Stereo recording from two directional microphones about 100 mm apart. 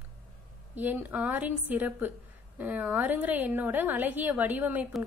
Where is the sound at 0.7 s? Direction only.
15° right (ahead or behind).